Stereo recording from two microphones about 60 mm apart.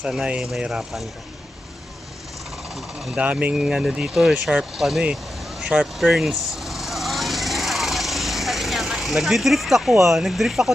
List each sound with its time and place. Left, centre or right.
0.0 s speech: centre
2.7 s speech: centre
3.2 s speech: right
3.5 s speech: centre
5.9 s vehicle: centre
10.0 s speech: centre